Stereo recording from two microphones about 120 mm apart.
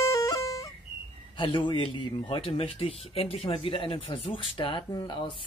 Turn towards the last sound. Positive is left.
turn(degrees=40)  # may be behind; listen again after turning